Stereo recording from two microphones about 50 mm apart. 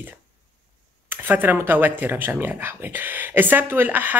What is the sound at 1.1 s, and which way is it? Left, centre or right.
Speech, right.